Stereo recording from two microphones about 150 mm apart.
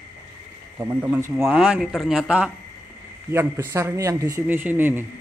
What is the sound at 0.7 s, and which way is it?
Speech, 15° right (ahead or behind).